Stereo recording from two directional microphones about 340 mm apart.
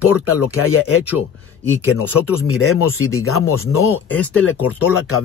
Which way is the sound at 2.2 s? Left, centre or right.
Left.